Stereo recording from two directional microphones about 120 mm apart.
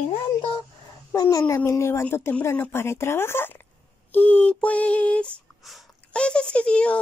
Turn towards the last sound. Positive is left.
turn(degrees=10)  # may be behind; listen again after turning